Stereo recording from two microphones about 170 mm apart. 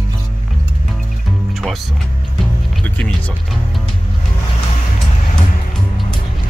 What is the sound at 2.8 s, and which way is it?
Speech, 5° left (ahead or behind).